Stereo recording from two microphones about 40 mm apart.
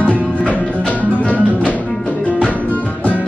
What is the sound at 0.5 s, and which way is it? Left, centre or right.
Music, left.